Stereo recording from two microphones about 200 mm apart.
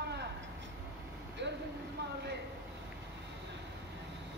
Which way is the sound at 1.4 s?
65° right (ahead or behind).